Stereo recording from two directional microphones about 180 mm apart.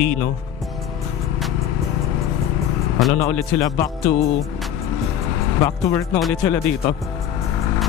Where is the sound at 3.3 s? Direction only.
15° left (ahead or behind).